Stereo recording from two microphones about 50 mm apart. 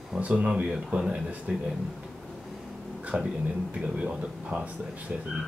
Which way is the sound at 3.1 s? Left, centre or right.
Right.